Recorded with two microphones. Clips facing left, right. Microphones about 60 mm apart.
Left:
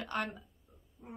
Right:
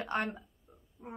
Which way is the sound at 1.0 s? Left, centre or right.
Right.